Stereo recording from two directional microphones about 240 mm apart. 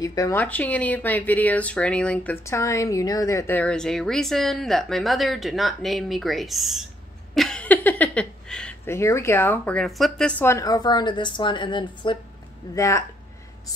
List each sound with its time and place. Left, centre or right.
0.0 s speech: centre